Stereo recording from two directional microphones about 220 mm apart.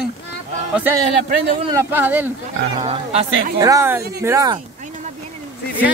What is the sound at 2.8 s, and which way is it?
Speech, 25° right (ahead or behind).